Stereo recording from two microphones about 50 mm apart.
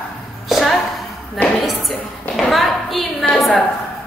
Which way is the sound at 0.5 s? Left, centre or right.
Centre.